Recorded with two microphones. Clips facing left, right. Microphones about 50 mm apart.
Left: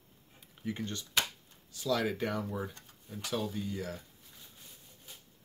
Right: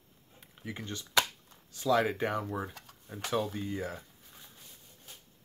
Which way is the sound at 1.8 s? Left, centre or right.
Right.